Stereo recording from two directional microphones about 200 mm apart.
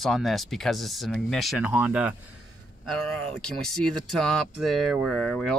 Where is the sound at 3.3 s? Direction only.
5° left (ahead or behind).